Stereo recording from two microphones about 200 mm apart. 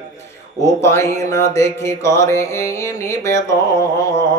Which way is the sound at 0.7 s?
15° left (ahead or behind).